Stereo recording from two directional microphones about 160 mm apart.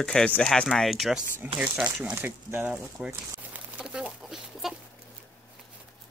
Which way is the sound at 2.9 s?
5° right (ahead or behind).